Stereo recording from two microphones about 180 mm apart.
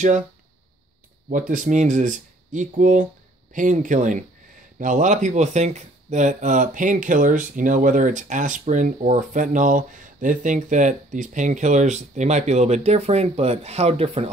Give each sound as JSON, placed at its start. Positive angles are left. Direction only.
{"t": 1.5, "sound": "speech", "side_deg": -45}